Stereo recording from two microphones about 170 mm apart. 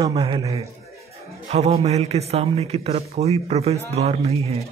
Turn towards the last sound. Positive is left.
turn(degrees=-35)  # may be behind; listen again after turning